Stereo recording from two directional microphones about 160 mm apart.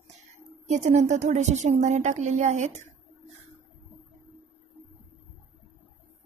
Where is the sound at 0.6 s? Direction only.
45° right (ahead or behind).